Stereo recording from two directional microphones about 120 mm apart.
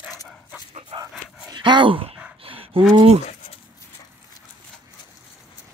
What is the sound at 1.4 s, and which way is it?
Dog, 40° right (ahead or behind).